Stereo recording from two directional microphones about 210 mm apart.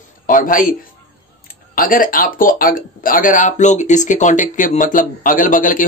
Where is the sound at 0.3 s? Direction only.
40° left (ahead or behind).